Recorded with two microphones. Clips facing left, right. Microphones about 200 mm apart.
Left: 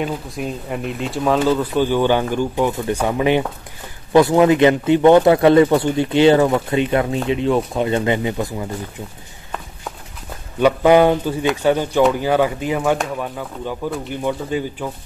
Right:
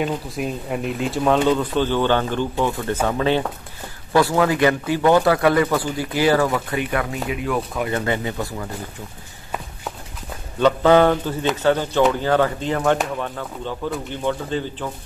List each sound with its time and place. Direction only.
0.0 s speech: centre (ahead or behind); by 8.6 s 20° left (ahead or behind)
10.6 s speech: 15° left (ahead or behind)